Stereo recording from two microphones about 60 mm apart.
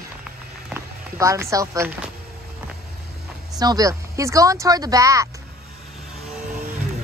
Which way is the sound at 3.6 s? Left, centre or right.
Right.